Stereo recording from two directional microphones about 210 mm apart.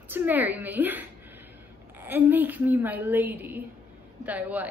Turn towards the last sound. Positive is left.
turn(degrees=-5)  # may be behind; listen again after turning